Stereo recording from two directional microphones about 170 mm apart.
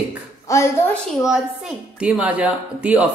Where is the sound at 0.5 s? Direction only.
20° left (ahead or behind).